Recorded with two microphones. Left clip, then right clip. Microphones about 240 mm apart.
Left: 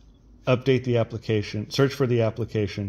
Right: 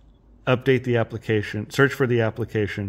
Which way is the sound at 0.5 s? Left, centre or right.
Right.